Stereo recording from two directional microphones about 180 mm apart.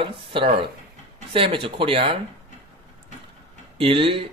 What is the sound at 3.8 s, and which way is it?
Speech, 30° right (ahead or behind).